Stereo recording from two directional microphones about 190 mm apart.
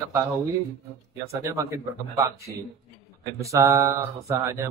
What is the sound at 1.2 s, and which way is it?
Speech, 15° right (ahead or behind).